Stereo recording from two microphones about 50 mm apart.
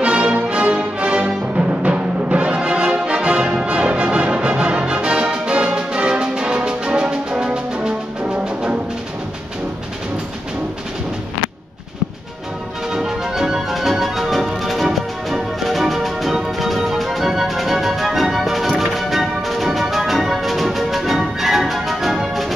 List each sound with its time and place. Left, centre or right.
0.0 s music: centre
12.9 s music: centre